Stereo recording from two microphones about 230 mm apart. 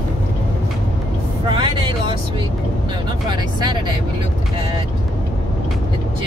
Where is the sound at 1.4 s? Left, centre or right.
Right.